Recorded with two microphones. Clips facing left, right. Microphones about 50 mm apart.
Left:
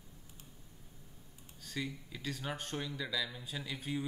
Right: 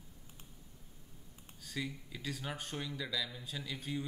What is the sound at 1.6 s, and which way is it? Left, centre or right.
Speech, centre.